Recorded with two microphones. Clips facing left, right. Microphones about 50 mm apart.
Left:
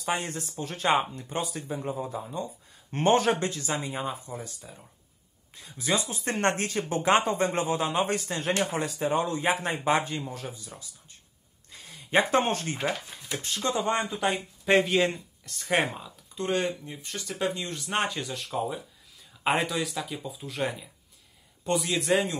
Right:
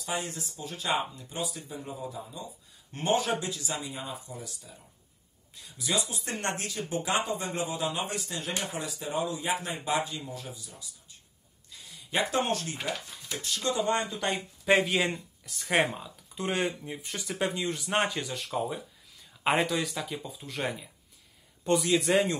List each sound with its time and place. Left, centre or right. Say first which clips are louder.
0.0 s speech: left 4 dB; left
11.7 s a sound: left 7 dB; left
13.4 s speech: left 1 dB; left
13.9 s speech: left 2 dB; centre